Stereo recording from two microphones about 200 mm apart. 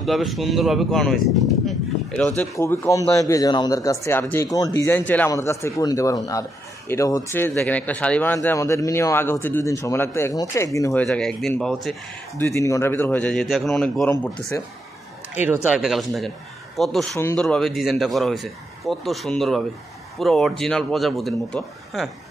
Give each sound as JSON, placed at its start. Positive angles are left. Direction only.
{"t": 0.0, "sound": "speech", "side_deg": 0}
{"t": 2.5, "sound": "speech", "side_deg": 15}
{"t": 11.1, "sound": "speech", "side_deg": 5}
{"t": 12.4, "sound": "speech", "side_deg": 15}
{"t": 15.4, "sound": "speech", "side_deg": -10}